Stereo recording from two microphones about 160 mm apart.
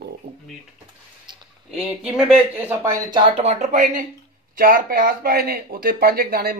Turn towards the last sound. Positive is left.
turn(degrees=-70)  # may be behind; listen again after turning